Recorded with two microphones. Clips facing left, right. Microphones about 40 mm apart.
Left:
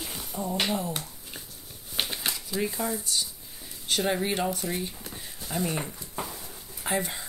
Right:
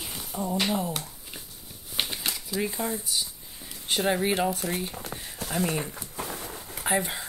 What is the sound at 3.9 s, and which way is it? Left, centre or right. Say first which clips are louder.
Speech: right 2 dB; centre.